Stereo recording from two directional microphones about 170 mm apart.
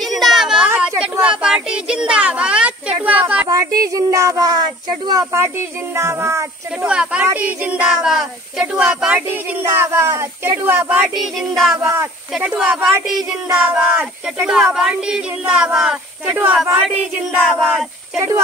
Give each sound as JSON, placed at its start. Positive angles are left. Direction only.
{"t": 0.0, "sound": "a sound", "side_deg": 0}
{"t": 1.1, "sound": "speech", "side_deg": -5}
{"t": 3.4, "sound": "speech", "side_deg": -20}
{"t": 6.9, "sound": "speech", "side_deg": -5}
{"t": 11.1, "sound": "speech", "side_deg": 0}
{"t": 11.9, "sound": "speech", "side_deg": -10}